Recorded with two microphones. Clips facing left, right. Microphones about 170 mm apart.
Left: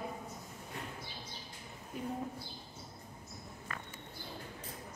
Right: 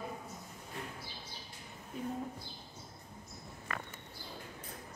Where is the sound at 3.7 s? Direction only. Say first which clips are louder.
Right 4 dB; 70° right (ahead or behind).